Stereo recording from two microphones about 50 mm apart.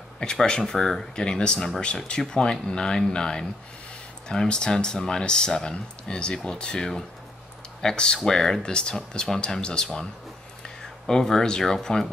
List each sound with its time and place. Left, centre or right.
0.2 s speech: centre
11.1 s speech: centre